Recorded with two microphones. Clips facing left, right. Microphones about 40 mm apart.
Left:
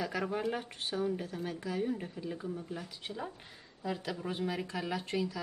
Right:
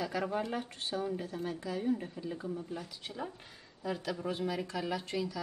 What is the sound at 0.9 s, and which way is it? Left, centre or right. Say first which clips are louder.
A woman's voice: left 1 dB; centre.